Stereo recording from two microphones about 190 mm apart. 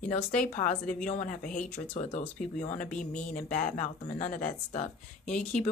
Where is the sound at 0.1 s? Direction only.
40° left (ahead or behind).